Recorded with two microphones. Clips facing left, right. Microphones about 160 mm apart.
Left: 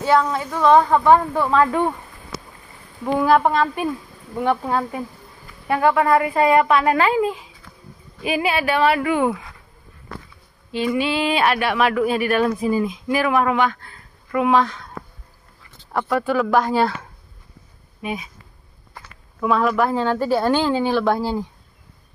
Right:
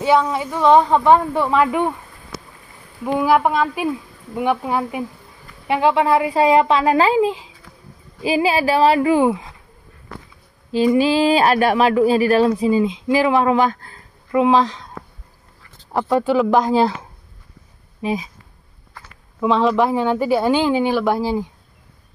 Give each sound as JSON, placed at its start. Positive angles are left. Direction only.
{"t": 0.0, "sound": "speech", "side_deg": -15}
{"t": 3.1, "sound": "a woman's voice", "side_deg": -5}
{"t": 11.0, "sound": "speech", "side_deg": -35}
{"t": 12.5, "sound": "a woman's voice", "side_deg": -20}
{"t": 15.9, "sound": "a woman's voice", "side_deg": -25}
{"t": 18.0, "sound": "speech", "side_deg": -30}
{"t": 19.4, "sound": "a woman's voice", "side_deg": -25}
{"t": 19.9, "sound": "speech", "side_deg": -10}